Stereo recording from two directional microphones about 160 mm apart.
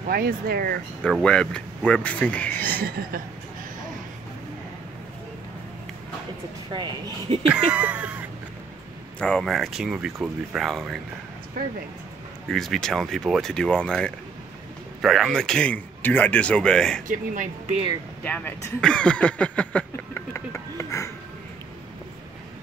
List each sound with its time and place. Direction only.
0.1 s speech: 70° right (ahead or behind)
1.2 s speech: 5° left (ahead or behind)
2.8 s speech: 70° right (ahead or behind)
6.7 s speech: 30° right (ahead or behind)
7.5 s a sound: 5° right (ahead or behind)
9.2 s speech: 5° left (ahead or behind)
12.4 s speech: centre (ahead or behind)
17.1 s speech: 50° right (ahead or behind)
18.2 s a sound: 10° left (ahead or behind)